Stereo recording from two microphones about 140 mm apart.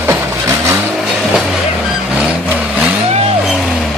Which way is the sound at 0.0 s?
20° right (ahead or behind).